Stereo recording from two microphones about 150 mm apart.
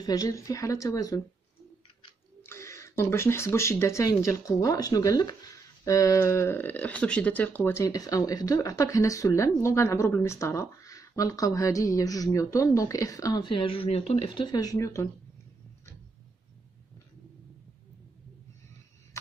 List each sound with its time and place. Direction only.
0.0 s speech: 25° left (ahead or behind)
2.4 s speech: 20° left (ahead or behind)